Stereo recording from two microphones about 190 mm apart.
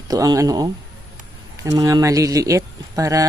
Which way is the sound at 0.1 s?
20° right (ahead or behind).